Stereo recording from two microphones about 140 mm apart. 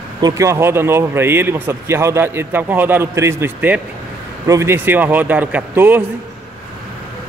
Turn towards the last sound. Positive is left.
turn(degrees=-15)  # may be behind; listen again after turning